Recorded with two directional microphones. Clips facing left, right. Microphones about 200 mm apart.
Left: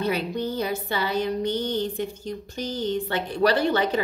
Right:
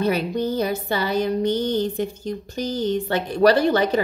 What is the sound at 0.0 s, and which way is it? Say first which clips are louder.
Music: right 4 dB; 40° right (ahead or behind).